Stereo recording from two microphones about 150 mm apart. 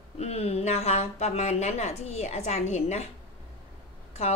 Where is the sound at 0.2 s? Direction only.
45° left (ahead or behind).